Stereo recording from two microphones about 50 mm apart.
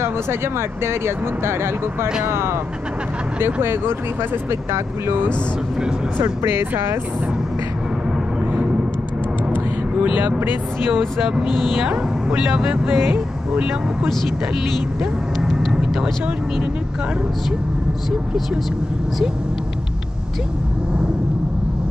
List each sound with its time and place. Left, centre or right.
0.0 s speech: right
3.3 s speech: right
5.8 s vehicle: centre
6.4 s speech: right
11.2 s speech: centre
11.5 s speech: centre
11.8 s speech: right
15.4 s vehicle: centre